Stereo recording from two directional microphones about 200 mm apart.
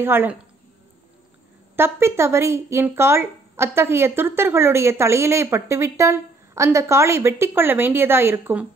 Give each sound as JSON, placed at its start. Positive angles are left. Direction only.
{"t": 0.0, "sound": "speech", "side_deg": -10}
{"t": 1.8, "sound": "speech", "side_deg": -15}